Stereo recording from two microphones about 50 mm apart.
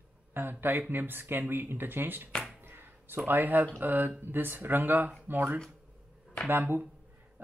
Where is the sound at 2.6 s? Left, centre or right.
Right.